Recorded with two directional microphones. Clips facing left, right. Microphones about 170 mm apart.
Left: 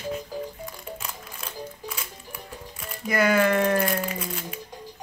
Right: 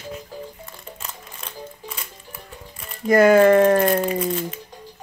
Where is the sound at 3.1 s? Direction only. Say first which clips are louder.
Right 9 dB; 45° right (ahead or behind).